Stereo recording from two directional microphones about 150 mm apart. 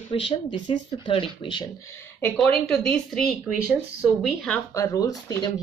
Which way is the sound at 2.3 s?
5° left (ahead or behind).